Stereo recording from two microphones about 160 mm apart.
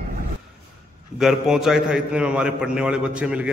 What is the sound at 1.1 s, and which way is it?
A man's voice, 5° right (ahead or behind).